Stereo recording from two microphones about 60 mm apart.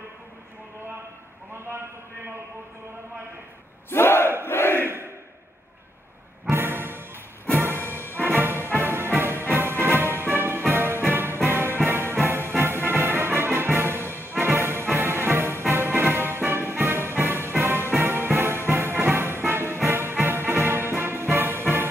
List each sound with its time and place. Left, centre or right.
3.9 s battle cry: left
4.5 s crowd: left
4.8 s a sound: right
6.5 s music: right